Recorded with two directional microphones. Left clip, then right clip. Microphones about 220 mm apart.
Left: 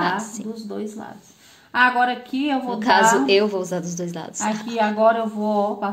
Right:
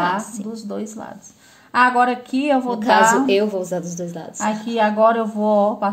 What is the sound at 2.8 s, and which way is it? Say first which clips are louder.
A woman's voice: even; centre (ahead or behind).